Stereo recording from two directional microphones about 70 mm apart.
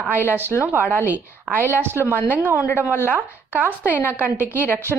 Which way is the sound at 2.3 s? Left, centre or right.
Right.